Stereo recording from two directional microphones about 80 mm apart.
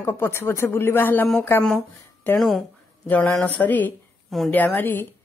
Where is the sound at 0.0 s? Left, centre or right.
Left.